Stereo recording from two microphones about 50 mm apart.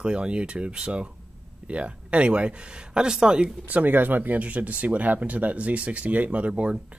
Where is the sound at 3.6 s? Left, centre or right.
Right.